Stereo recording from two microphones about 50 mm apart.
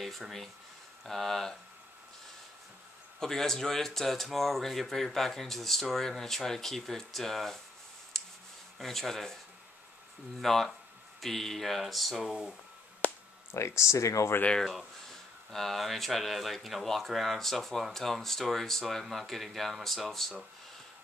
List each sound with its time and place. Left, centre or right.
0.0 s speech: centre
3.2 s speech: centre
8.2 s a sound: centre
8.7 s speech: centre
10.4 s speech: centre
13.0 s a sound: left
13.5 s speech: left
15.5 s speech: centre